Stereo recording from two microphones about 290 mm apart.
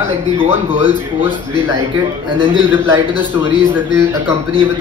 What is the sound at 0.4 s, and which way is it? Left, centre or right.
Speech, centre.